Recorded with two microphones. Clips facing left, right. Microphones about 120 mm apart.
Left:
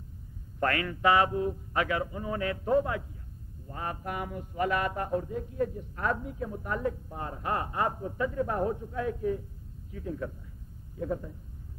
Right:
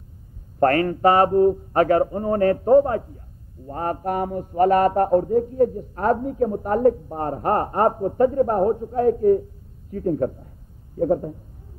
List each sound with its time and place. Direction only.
0.6 s mantra: 45° right (ahead or behind)